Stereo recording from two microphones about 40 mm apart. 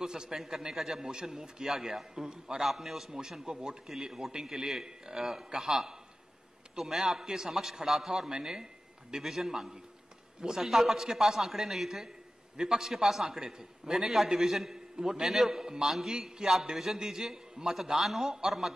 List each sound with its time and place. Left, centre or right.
0.0 s a man's voice: centre
2.6 s a man's voice: centre